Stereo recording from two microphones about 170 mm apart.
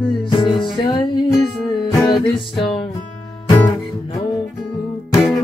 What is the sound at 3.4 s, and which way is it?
Guitar, 20° left (ahead or behind).